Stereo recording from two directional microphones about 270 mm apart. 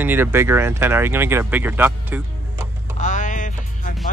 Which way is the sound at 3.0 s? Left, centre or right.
Left.